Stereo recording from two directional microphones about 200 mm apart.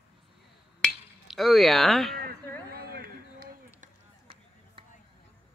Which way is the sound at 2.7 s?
50° right (ahead or behind).